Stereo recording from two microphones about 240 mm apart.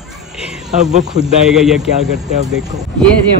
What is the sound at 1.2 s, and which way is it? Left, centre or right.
Speech, centre.